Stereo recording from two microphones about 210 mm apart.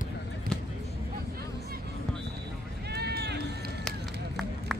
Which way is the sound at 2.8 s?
50° right (ahead or behind).